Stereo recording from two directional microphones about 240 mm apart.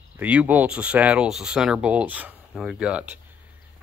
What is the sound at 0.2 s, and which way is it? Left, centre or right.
Speech, centre.